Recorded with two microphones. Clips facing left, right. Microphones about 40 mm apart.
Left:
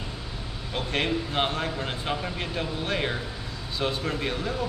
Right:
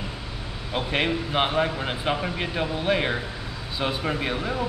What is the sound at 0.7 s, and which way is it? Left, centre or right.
A man's voice, centre.